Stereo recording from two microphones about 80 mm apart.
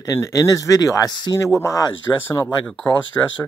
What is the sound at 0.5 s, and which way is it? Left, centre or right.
Speech, left.